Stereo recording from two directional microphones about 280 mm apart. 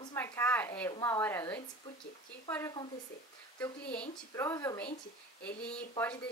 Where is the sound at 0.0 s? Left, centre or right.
Centre.